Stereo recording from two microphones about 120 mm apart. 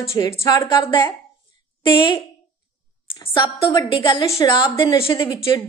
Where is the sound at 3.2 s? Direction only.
45° left (ahead or behind).